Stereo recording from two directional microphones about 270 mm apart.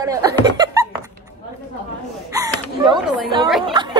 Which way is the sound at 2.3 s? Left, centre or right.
Centre.